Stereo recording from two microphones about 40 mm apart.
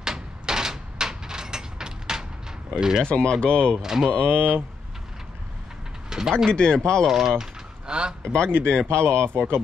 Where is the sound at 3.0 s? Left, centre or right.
Left.